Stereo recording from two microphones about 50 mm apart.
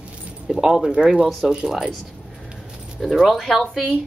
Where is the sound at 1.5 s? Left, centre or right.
Centre.